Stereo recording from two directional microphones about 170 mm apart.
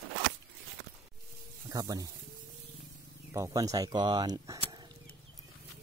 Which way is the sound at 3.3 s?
20° right (ahead or behind).